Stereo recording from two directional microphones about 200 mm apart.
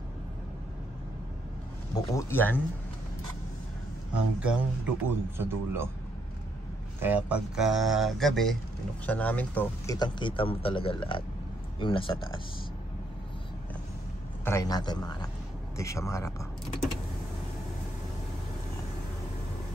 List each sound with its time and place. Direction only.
2.0 s speech: 15° left (ahead or behind)
4.4 s a man's voice: 5° right (ahead or behind)
7.0 s speech: 10° right (ahead or behind); by 9.9 s 10° left (ahead or behind)
9.9 s speech: 20° left (ahead or behind)
14.4 s speech: 15° left (ahead or behind)